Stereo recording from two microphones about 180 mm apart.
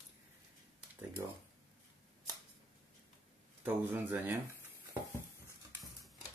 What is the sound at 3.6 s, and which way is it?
Speech, 10° right (ahead or behind).